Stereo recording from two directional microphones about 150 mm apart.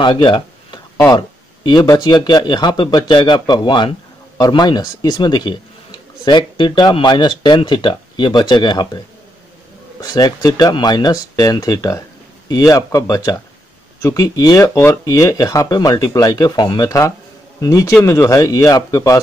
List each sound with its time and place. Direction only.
0.0 s a sound: 30° left (ahead or behind)
1.0 s speech: 25° left (ahead or behind)
10.0 s speech: 25° left (ahead or behind)